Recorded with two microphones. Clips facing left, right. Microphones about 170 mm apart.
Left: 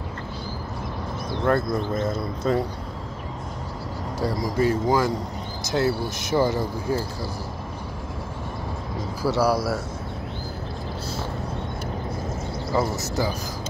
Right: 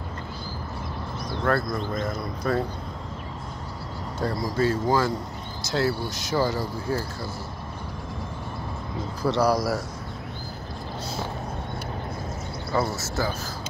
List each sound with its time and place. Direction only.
1.4 s speech: 25° left (ahead or behind)
4.2 s speech: 15° left (ahead or behind)
9.2 s speech: 5° left (ahead or behind)
12.9 s speech: 15° left (ahead or behind)